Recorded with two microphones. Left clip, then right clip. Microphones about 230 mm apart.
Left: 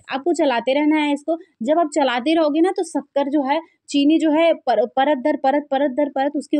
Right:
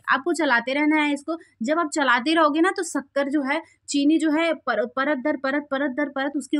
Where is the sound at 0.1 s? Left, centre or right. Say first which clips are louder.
Left 1 dB; centre.